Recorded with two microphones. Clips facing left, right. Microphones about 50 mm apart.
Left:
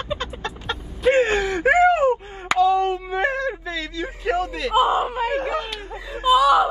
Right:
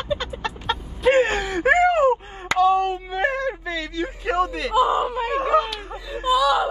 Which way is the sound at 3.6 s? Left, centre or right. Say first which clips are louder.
Right 1 dB; right.